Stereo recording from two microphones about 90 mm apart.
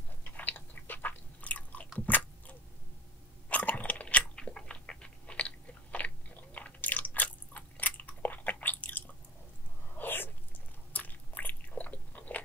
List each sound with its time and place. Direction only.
0.2 s biting: 20° left (ahead or behind)
9.9 s sneeze: 20° left (ahead or behind)
10.9 s biting: 20° left (ahead or behind)